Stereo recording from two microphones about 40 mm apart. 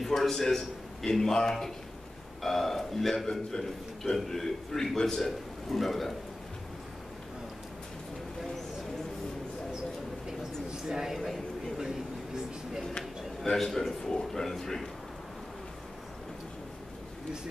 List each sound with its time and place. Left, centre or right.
0.0 s a man's voice: centre
3.5 s a man's voice: left
4.1 s a man's voice: centre
10.9 s a man's voice: centre
13.5 s a man's voice: centre